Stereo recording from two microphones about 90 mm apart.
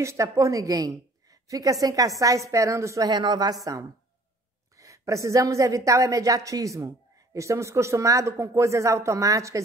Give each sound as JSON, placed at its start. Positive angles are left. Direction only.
{"t": 0.0, "sound": "a woman's voice", "side_deg": -30}
{"t": 3.1, "sound": "speech", "side_deg": -55}
{"t": 4.7, "sound": "a woman's voice", "side_deg": -35}